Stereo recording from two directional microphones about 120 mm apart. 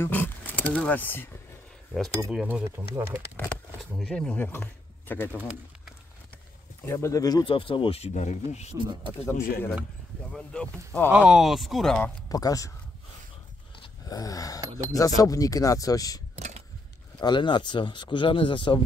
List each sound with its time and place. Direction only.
0.0 s speech: 15° left (ahead or behind)
2.4 s speech: 15° right (ahead or behind)
4.0 s speech: 10° left (ahead or behind)
6.9 s speech: 25° left (ahead or behind)
7.4 s speech: 45° left (ahead or behind); by 8.7 s 70° left (ahead or behind)
8.7 s speech: 40° right (ahead or behind)
9.2 s speech: 15° left (ahead or behind)
11.1 s speech: 10° right (ahead or behind)
12.3 s speech: 30° left (ahead or behind)
14.0 s speech: 30° left (ahead or behind)
16.3 s vehicle: 65° right (ahead or behind)
17.2 s speech: 40° left (ahead or behind)